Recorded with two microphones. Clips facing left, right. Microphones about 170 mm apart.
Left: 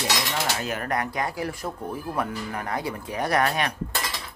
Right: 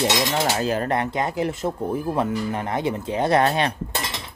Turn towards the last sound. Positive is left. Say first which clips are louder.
# right 3 dB
turn(degrees=-25)  # may be behind; listen again after turning